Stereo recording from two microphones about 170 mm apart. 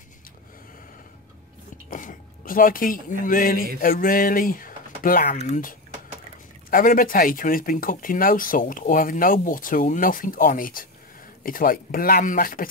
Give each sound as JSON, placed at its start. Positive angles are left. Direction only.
{"t": 1.9, "sound": "speech", "side_deg": 55}